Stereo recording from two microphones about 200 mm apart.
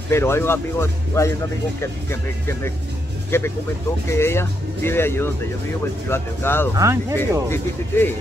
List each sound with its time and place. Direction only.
0.1 s speech: 10° left (ahead or behind)
6.8 s speech: 15° right (ahead or behind)
7.4 s speech: 10° left (ahead or behind)